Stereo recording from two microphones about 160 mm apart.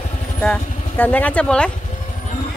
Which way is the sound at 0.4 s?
10° left (ahead or behind).